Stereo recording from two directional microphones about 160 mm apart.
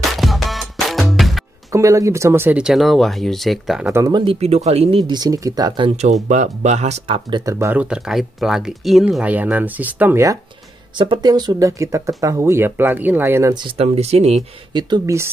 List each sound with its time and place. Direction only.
0.1 s music: centre (ahead or behind)
1.7 s speech: 20° right (ahead or behind); by 3.9 s centre (ahead or behind)
3.9 s speech: 25° right (ahead or behind)
6.2 s speech: 45° right (ahead or behind)
7.2 s speech: 30° right (ahead or behind)
7.5 s speech: 15° right (ahead or behind)
13.7 s speech: 40° right (ahead or behind)
14.7 s speech: 30° right (ahead or behind)